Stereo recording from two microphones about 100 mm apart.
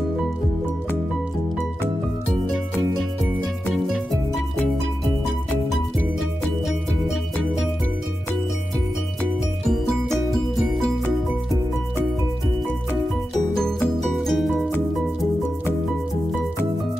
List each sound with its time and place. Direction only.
3.7 s music: centre (ahead or behind)
14.1 s music: centre (ahead or behind)